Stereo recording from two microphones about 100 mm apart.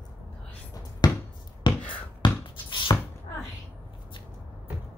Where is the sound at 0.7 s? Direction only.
40° left (ahead or behind).